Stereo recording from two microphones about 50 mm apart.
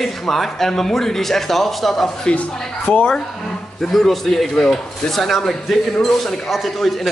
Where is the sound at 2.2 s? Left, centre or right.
Centre.